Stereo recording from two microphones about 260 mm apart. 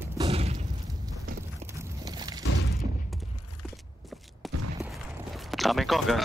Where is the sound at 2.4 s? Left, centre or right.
Left.